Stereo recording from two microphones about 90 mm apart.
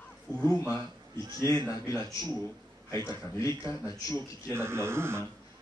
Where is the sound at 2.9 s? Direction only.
35° left (ahead or behind).